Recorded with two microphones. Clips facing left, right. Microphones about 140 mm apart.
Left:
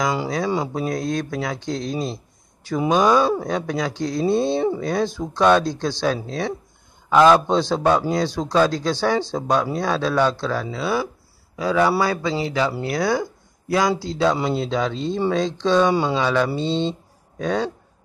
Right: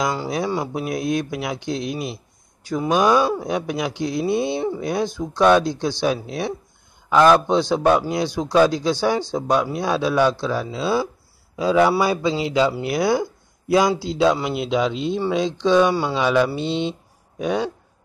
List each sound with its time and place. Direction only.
0.7 s speech: 10° right (ahead or behind)
7.1 s a man's voice: centre (ahead or behind)
15.9 s speech: 20° left (ahead or behind)
16.2 s speech: 15° right (ahead or behind)